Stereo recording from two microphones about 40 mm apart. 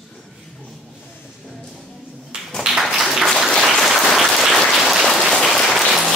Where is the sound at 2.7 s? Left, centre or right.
Centre.